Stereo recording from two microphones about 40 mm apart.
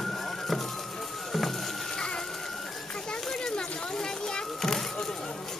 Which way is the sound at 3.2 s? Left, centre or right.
Centre.